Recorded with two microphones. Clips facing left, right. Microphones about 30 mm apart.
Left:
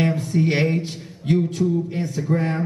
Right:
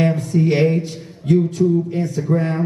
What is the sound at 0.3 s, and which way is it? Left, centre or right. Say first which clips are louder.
Speech: right 3 dB; centre.